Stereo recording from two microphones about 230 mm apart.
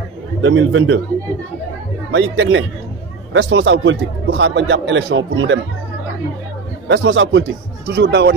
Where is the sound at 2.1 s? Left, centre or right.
Right.